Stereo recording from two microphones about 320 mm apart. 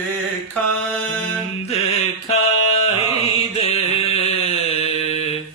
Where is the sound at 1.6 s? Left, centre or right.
Centre.